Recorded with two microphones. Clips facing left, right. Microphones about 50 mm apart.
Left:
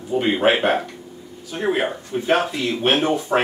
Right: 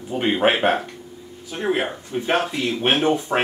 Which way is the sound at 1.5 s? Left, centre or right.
Centre.